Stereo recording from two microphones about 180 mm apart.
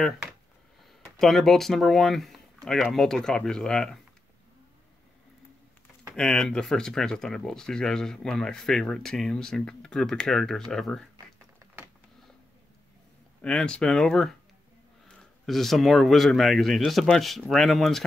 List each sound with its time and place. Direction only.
1.2 s speech: centre (ahead or behind)
6.1 s speech: 5° left (ahead or behind)
13.4 s speech: 5° left (ahead or behind)